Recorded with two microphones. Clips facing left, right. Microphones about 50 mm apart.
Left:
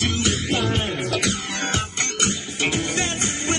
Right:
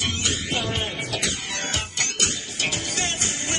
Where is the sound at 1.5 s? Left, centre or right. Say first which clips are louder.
Left 3 dB; left.